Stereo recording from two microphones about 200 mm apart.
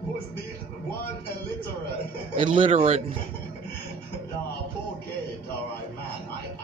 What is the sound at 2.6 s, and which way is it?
Speech, 30° right (ahead or behind).